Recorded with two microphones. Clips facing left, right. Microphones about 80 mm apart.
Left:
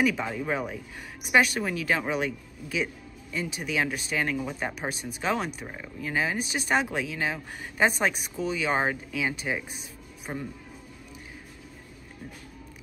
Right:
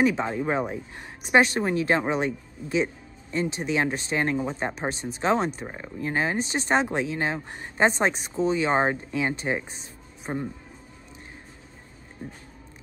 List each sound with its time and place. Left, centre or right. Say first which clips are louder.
0.0 s speech: right 3 dB; right